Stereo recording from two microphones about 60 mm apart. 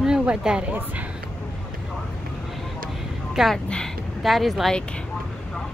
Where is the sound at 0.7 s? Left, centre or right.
Right.